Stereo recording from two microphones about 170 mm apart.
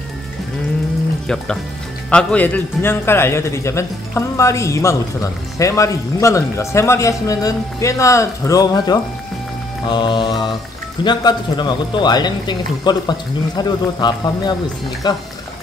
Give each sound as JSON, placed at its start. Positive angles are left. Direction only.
{"t": 1.2, "sound": "a man's voice", "side_deg": 5}